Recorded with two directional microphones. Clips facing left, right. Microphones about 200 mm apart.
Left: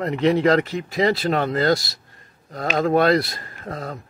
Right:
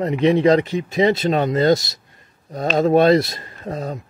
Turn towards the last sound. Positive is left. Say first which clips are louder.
# right 4 dB
turn(degrees=-20)  # may be behind; listen again after turning